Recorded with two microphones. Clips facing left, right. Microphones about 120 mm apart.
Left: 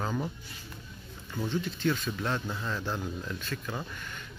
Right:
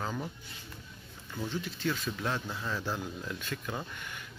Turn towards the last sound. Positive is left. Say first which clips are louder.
# left 1 dB
turn(degrees=-15)  # may be behind; listen again after turning